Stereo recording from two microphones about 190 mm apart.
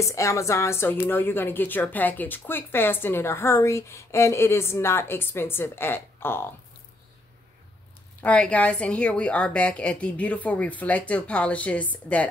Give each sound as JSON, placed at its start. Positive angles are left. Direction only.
{"t": 0.0, "sound": "speech", "side_deg": 15}
{"t": 8.2, "sound": "speech", "side_deg": 5}